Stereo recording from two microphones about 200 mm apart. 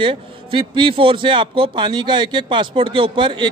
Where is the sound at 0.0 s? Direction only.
25° right (ahead or behind).